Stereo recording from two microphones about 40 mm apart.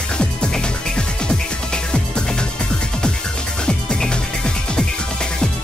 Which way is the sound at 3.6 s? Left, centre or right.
Centre.